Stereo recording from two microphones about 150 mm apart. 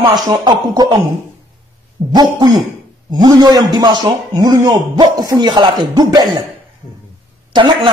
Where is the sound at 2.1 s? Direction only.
30° right (ahead or behind).